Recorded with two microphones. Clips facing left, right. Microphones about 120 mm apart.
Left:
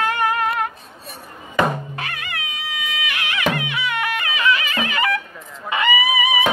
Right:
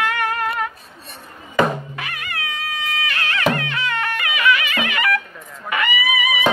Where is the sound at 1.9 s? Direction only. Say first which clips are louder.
Left 1 dB; 30° left (ahead or behind).